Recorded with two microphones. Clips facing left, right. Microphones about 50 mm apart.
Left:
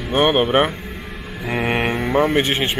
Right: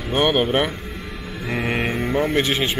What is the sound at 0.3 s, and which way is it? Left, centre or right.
Speech, left.